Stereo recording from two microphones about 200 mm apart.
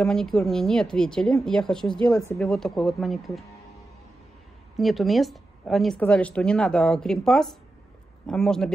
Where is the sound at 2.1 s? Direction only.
15° left (ahead or behind).